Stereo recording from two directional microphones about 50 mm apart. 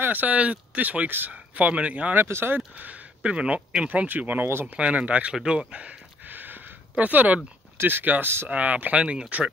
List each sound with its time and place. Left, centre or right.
0.0 s speech: right
2.2 s speech: right
2.8 s speech: right
4.1 s speech: right
4.7 s speech: right
5.3 s speech: centre
6.2 s a sound: right
7.7 s speech: right